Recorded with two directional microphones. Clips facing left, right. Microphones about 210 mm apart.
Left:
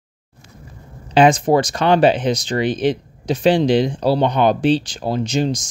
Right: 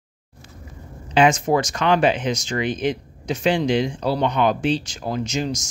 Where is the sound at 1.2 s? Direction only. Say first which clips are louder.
Left 4 dB; 35° left (ahead or behind).